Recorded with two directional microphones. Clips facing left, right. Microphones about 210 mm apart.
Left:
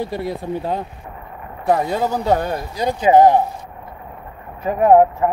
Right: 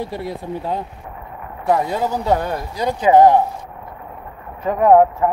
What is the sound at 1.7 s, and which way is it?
Speech, 30° left (ahead or behind).